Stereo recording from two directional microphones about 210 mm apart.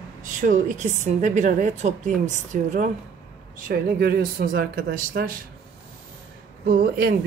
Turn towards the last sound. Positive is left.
turn(degrees=-45)  # may be behind; listen again after turning